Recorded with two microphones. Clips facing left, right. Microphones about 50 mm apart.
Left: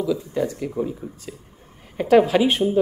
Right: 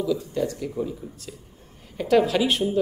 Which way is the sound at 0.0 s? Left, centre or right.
Centre.